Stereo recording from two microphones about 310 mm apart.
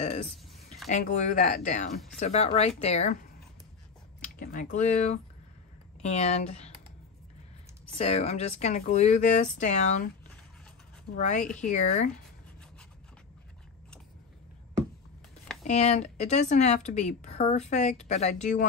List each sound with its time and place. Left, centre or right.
0.0 s a sound: centre
0.8 s speech: left
4.4 s speech: left
8.0 s speech: left
11.1 s speech: left
15.6 s speech: left